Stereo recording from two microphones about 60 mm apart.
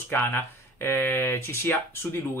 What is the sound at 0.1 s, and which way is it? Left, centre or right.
Speech, left.